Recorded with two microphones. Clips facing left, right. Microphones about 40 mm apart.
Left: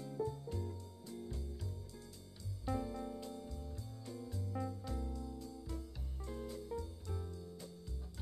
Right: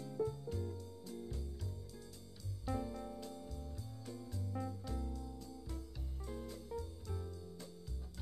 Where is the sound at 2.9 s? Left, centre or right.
Centre.